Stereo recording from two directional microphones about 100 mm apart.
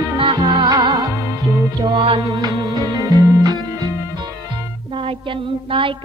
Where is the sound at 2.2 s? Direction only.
35° right (ahead or behind).